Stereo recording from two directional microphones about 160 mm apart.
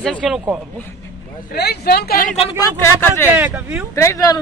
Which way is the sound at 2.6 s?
15° left (ahead or behind).